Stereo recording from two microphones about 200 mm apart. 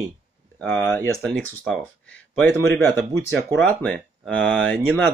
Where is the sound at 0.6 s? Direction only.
5° left (ahead or behind).